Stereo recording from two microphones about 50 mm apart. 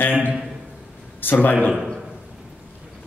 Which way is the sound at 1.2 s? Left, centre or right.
Left.